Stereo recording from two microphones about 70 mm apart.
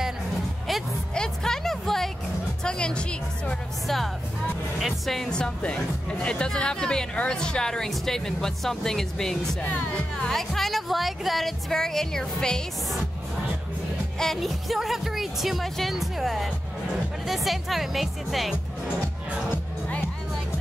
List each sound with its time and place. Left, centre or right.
1.1 s music: centre
2.6 s a woman's voice: centre
3.8 s speech: centre
9.6 s speech: centre
10.3 s speech: centre
14.1 s speech: centre